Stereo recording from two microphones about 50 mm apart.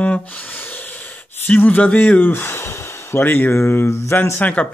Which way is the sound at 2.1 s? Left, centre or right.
Left.